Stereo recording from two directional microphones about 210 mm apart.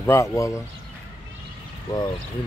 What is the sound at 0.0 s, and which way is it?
Speech, 15° left (ahead or behind).